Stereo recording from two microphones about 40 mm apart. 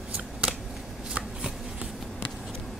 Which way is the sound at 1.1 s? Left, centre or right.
Centre.